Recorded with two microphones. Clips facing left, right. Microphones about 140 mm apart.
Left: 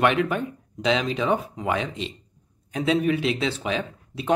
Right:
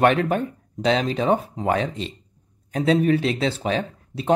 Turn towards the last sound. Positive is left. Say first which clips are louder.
# right 3 dB
turn(degrees=-40)  # may be behind; listen again after turning